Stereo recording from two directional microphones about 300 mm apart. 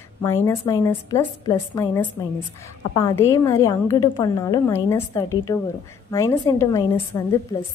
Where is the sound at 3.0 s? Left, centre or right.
Centre.